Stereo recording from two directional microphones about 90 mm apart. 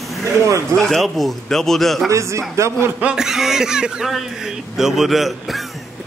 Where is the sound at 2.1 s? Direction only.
35° right (ahead or behind).